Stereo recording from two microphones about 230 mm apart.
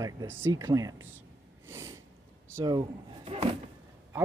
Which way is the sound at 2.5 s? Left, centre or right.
Centre.